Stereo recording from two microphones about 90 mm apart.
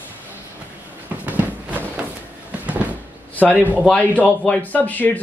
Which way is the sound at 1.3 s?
20° right (ahead or behind).